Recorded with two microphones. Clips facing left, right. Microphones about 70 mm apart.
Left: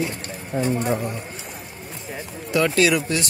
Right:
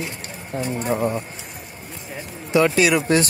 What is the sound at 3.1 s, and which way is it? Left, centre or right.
Speech, right.